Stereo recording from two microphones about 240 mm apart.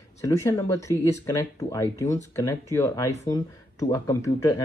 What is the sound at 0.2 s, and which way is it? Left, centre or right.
Speech, centre.